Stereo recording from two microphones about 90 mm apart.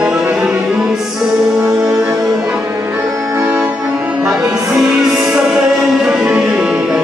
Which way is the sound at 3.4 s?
15° right (ahead or behind).